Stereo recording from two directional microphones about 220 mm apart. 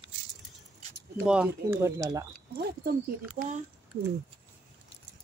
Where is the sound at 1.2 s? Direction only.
5° right (ahead or behind).